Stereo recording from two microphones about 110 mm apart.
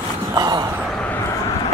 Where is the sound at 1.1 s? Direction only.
25° left (ahead or behind).